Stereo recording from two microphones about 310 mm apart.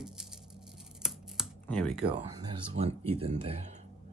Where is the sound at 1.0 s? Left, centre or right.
Centre.